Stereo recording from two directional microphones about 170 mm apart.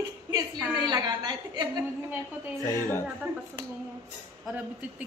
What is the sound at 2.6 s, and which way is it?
Speech, 15° left (ahead or behind).